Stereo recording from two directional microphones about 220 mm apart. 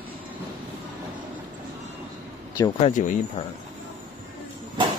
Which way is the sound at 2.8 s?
30° left (ahead or behind).